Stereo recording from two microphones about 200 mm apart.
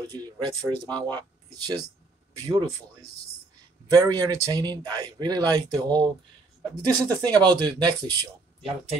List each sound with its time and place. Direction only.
0.1 s speech: 20° right (ahead or behind)
0.8 s speech: 5° left (ahead or behind)
1.1 s speech: 20° right (ahead or behind)